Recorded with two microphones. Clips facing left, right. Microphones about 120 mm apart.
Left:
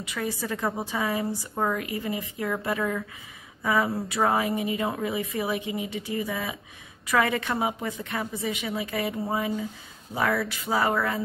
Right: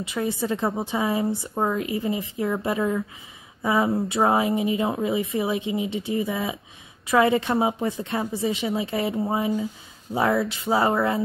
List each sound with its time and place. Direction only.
0.0 s a woman's voice: 25° right (ahead or behind)